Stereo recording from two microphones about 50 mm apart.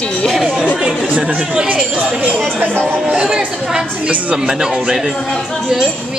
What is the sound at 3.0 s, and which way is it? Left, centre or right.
A woman's voice, centre.